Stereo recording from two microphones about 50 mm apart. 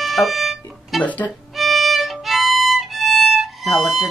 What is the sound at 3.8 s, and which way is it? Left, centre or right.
Speech, left.